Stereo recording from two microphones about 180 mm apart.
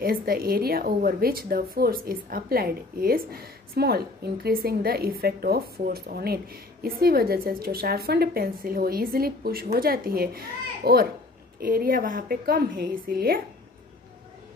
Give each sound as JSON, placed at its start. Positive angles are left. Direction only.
{"t": 0.0, "sound": "a woman's voice", "side_deg": -55}